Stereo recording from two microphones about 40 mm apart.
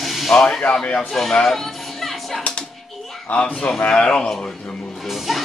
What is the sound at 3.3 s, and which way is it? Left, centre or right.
A man's voice, left.